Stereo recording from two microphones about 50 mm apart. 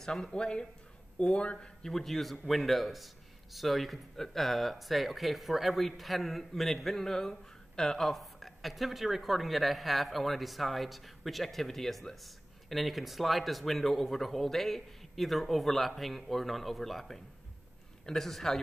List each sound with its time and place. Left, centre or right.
0.0 s speech: centre
1.8 s speech: centre